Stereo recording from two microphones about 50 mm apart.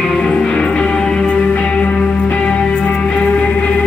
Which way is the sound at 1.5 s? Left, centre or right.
Left.